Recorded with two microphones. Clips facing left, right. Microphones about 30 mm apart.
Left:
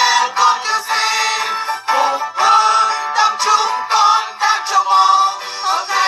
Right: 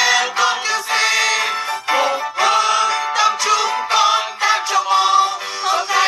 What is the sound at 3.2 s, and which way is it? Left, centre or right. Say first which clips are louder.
Music: left 3 dB; left.